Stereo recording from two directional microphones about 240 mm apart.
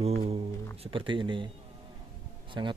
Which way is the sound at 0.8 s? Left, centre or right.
Right.